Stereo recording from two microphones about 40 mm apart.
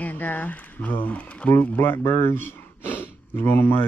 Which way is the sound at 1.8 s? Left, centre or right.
Left.